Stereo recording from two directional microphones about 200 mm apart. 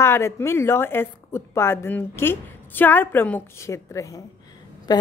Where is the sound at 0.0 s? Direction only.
15° left (ahead or behind).